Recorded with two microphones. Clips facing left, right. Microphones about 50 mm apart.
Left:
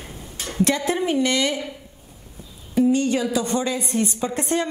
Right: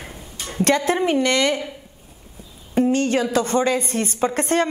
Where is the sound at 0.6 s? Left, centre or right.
Right.